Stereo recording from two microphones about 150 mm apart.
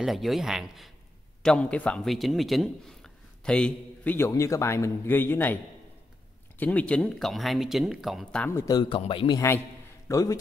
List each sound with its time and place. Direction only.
0.0 s a man's voice: centre (ahead or behind)
6.6 s speech: 10° left (ahead or behind)
8.5 s speech: 20° left (ahead or behind)
8.8 s speech: 35° left (ahead or behind)
10.0 s speech: 20° left (ahead or behind)